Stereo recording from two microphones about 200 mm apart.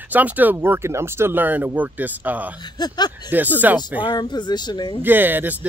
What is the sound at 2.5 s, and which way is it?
Speech, 20° left (ahead or behind).